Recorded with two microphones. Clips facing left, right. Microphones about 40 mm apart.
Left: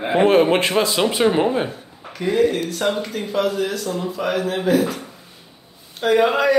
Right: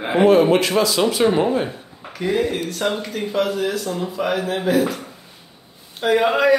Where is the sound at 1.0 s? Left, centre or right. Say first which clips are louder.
Left 1 dB; centre.